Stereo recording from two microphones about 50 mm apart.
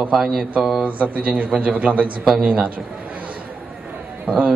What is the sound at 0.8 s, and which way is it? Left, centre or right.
A man's voice, right.